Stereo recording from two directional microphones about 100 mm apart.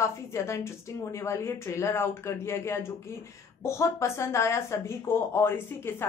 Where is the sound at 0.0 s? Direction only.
30° left (ahead or behind).